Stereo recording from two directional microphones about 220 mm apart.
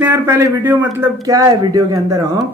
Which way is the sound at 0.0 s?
10° right (ahead or behind).